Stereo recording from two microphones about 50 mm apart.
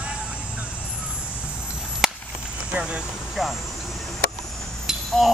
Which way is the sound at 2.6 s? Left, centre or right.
Centre.